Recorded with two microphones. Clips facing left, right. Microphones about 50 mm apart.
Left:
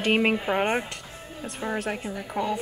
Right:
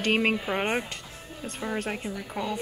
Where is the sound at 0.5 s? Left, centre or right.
Centre.